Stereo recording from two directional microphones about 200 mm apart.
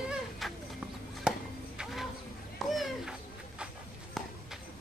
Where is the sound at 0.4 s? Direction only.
Centre (ahead or behind).